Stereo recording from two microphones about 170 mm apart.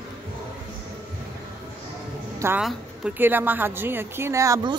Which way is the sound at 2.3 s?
15° right (ahead or behind).